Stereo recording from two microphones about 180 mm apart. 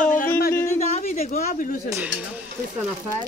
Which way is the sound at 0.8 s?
40° left (ahead or behind).